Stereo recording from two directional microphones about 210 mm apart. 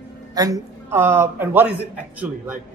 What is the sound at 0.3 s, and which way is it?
A man's voice, 15° right (ahead or behind).